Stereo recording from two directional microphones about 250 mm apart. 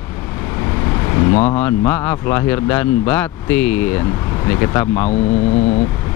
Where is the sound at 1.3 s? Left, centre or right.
Left.